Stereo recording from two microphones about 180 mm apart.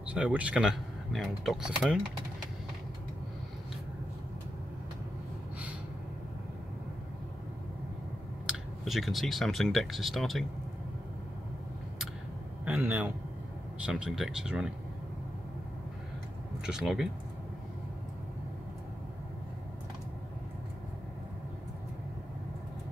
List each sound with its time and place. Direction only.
0.1 s speech: 5° right (ahead or behind)
8.5 s speech: centre (ahead or behind)
12.6 s a man's voice: 10° right (ahead or behind)
16.6 s speech: 5° right (ahead or behind)